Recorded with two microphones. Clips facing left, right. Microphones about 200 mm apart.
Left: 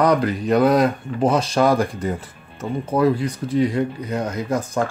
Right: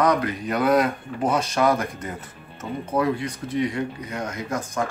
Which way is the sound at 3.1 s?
35° left (ahead or behind).